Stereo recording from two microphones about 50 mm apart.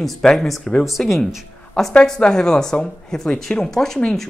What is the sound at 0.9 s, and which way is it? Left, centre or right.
Speech, centre.